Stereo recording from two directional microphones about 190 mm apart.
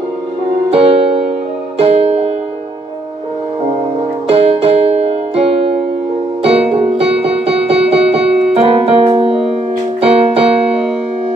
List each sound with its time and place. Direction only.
0.7 s music: 30° right (ahead or behind)
4.3 s music: 30° right (ahead or behind)
6.6 s music: 5° right (ahead or behind)
7.6 s music: 30° right (ahead or behind)
9.9 s keyboard: 30° right (ahead or behind)